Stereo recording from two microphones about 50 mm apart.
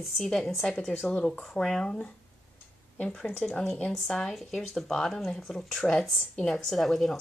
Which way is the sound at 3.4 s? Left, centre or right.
Centre.